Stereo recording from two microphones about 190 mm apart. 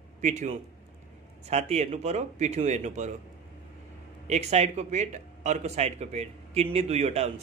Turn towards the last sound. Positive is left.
turn(degrees=-35)  # may be behind; listen again after turning